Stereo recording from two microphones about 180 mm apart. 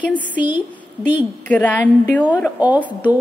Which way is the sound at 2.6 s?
10° right (ahead or behind).